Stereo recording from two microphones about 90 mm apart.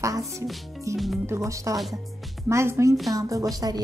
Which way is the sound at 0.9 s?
Centre (ahead or behind).